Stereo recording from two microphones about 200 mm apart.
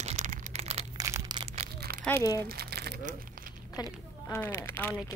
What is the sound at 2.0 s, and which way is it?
Speech, 15° left (ahead or behind).